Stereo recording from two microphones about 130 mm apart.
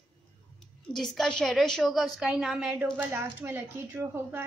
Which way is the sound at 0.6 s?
5° left (ahead or behind).